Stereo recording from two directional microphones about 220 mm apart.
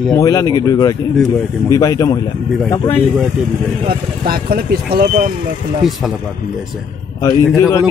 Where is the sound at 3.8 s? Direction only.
40° right (ahead or behind).